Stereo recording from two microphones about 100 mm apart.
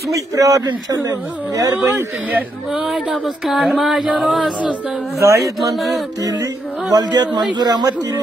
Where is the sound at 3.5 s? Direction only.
Centre (ahead or behind).